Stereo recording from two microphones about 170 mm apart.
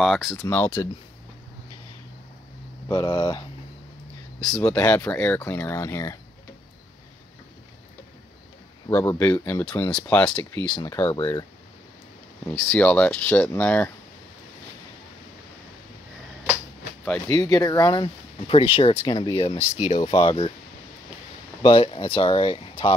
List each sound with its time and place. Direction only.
0.0 s speech: centre (ahead or behind)
0.4 s speech: 10° left (ahead or behind)
2.9 s speech: 25° left (ahead or behind)
4.4 s speech: 5° left (ahead or behind)
8.9 s speech: 20° left (ahead or behind)
10.8 s speech: 15° left (ahead or behind)
12.5 s speech: 10° left (ahead or behind)
17.3 s speech: 20° left (ahead or behind)
21.6 s speech: 30° left (ahead or behind)